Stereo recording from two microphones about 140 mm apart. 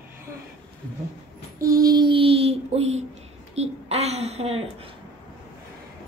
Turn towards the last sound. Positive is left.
turn(degrees=-45)  # may be behind; listen again after turning